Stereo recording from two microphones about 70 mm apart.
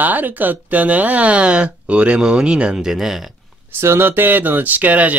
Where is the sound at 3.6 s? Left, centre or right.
Right.